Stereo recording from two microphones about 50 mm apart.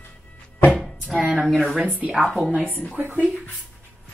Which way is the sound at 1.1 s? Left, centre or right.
Centre.